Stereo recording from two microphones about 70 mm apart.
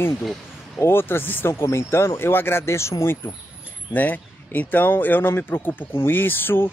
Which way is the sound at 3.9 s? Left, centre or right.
Left.